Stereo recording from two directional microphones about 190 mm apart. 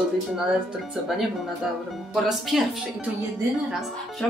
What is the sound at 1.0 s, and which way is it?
A woman's voice, centre (ahead or behind).